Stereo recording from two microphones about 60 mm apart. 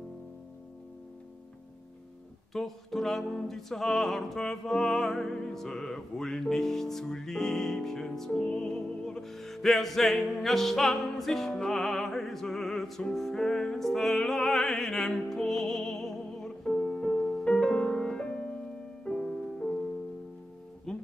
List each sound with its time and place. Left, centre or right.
2.5 s music: centre
20.9 s guitar: centre